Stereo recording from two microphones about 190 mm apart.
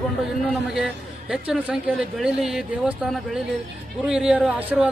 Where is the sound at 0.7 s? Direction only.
5° right (ahead or behind).